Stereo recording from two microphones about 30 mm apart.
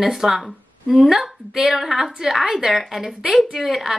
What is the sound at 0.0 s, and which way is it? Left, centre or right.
A woman's voice, centre.